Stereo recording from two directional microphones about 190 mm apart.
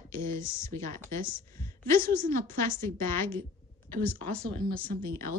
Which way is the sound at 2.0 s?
50° right (ahead or behind).